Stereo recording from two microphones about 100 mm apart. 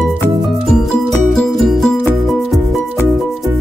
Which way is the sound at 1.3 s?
Centre (ahead or behind).